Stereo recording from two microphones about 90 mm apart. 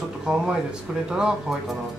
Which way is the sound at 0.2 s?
5° right (ahead or behind).